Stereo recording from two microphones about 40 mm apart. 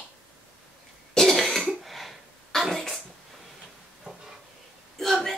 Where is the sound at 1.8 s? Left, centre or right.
Centre.